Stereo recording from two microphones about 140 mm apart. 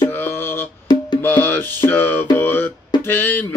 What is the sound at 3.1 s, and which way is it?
Speech, 10° left (ahead or behind).